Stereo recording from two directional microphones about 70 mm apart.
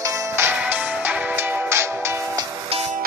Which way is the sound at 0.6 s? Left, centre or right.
Centre.